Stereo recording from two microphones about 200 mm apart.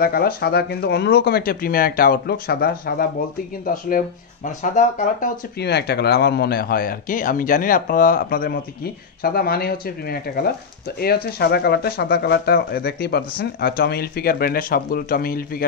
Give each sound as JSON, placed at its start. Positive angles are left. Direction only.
{"t": 0.0, "sound": "speech", "side_deg": 50}
{"t": 5.6, "sound": "speech", "side_deg": 55}